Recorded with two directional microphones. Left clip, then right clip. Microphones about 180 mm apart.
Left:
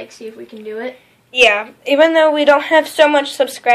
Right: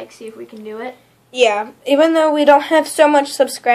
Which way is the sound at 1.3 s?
20° right (ahead or behind).